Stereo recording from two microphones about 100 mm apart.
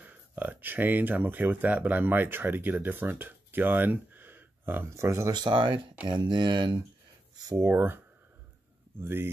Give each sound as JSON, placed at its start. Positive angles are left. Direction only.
{"t": 0.0, "sound": "speech", "side_deg": -15}
{"t": 5.3, "sound": "speech", "side_deg": -50}
{"t": 7.5, "sound": "speech", "side_deg": -25}
{"t": 9.0, "sound": "speech", "side_deg": -20}